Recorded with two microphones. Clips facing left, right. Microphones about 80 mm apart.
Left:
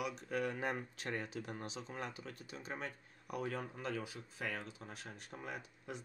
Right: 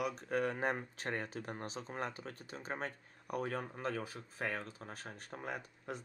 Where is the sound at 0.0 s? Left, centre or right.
Right.